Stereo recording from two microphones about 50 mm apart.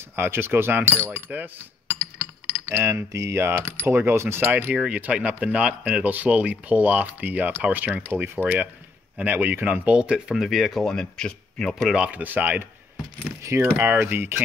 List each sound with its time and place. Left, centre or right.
0.1 s a sound: right
1.0 s speech: right
2.6 s speech: right
3.4 s a sound: right
3.8 s speech: right
4.4 s speech: right
9.7 s speech: right
10.3 s speech: centre
10.9 s speech: centre
12.1 s speech: right
13.7 s a sound: right